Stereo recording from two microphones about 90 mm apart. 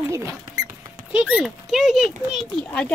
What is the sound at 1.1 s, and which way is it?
A child's voice, 10° right (ahead or behind).